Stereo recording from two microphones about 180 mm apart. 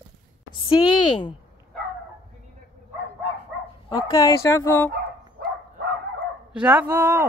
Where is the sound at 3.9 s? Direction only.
20° left (ahead or behind).